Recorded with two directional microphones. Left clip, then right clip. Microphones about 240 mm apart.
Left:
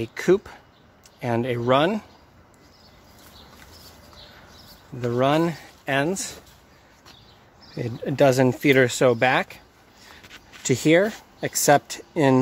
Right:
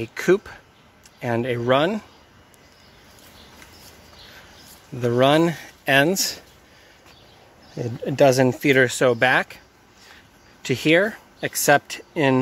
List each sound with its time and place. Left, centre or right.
0.0 s speech: centre
5.0 s speech: centre
7.7 s speech: centre
10.6 s speech: centre